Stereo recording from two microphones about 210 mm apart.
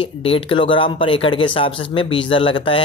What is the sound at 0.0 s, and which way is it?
Speech, 25° left (ahead or behind).